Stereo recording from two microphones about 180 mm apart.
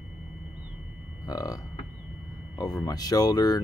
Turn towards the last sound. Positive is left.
turn(degrees=20)  # may be behind; listen again after turning